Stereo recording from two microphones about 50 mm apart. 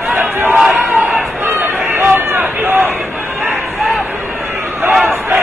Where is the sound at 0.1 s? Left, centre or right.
Right.